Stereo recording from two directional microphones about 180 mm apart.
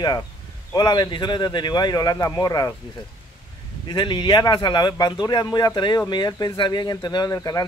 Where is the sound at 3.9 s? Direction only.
25° left (ahead or behind).